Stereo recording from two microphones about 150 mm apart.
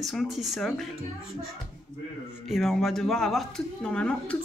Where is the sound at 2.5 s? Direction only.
Centre (ahead or behind).